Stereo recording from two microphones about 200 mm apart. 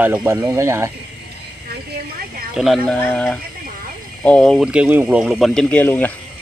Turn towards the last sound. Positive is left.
turn(degrees=10)  # may be behind; listen again after turning